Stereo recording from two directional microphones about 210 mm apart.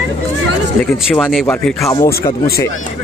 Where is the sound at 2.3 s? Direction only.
20° left (ahead or behind).